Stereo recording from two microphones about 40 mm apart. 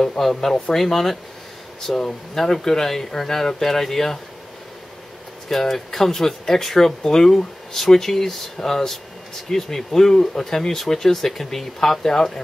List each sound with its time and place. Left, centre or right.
0.2 s speech: centre
5.5 s speech: centre